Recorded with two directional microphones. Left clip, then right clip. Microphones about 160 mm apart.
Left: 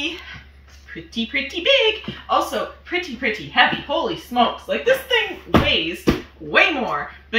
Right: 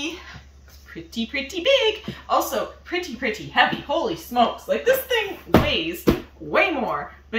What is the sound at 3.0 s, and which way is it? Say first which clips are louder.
Speech: left 3 dB; 45° right (ahead or behind).